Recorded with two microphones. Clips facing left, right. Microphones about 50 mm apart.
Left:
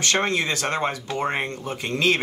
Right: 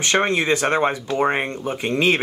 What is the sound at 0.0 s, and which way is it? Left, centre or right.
Speech, right.